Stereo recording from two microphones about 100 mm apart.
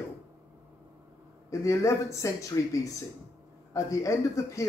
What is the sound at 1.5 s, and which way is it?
Speech, 30° left (ahead or behind).